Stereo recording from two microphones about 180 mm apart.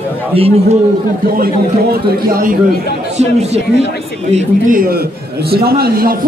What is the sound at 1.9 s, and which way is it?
Speech, 55° right (ahead or behind).